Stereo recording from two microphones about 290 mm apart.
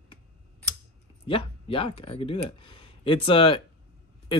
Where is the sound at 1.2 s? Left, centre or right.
Centre.